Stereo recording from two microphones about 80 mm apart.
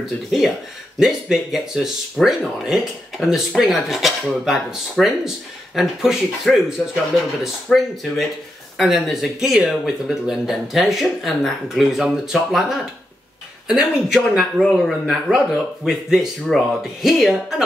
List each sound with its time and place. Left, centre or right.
0.9 s speech: centre
7.7 s speech: centre